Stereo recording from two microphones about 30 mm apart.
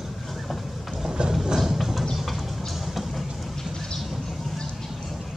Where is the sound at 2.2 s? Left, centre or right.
Centre.